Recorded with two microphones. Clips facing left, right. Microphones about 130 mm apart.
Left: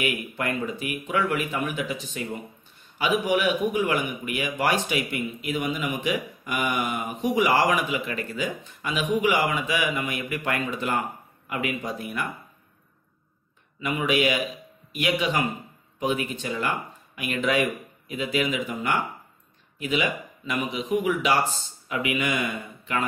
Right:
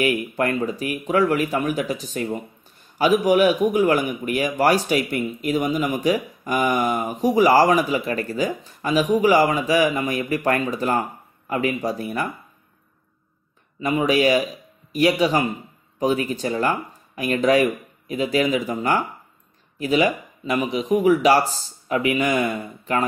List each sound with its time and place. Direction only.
0.0 s a man's voice: 40° right (ahead or behind)
13.7 s a man's voice: 35° right (ahead or behind)